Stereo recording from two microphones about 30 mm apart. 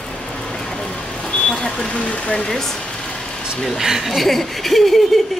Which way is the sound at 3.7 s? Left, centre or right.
Centre.